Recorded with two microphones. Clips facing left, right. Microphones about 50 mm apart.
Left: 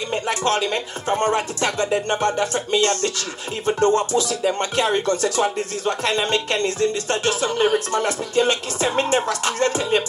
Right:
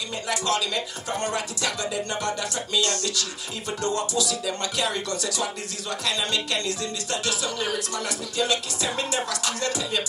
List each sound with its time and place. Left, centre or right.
0.1 s speech: left